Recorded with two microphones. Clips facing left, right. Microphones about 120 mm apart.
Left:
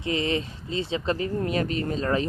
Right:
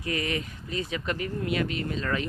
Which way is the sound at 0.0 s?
25° left (ahead or behind).